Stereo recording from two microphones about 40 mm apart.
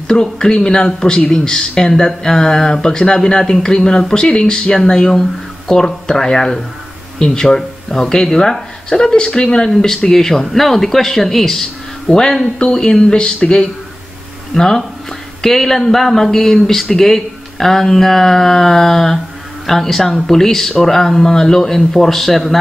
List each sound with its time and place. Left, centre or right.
0.1 s speech: centre
12.5 s speech: left
14.5 s speech: centre